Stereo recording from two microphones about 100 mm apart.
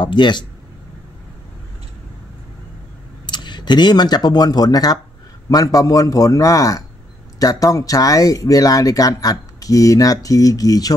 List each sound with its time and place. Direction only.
0.0 s speech: 50° left (ahead or behind)
3.3 s speech: 50° left (ahead or behind)